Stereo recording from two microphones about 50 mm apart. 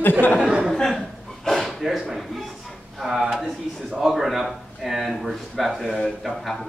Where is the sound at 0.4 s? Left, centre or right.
Right.